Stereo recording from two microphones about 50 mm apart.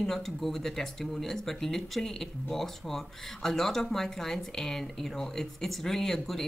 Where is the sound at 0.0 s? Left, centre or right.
Centre.